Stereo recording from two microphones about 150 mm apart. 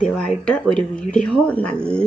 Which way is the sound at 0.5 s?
5° left (ahead or behind).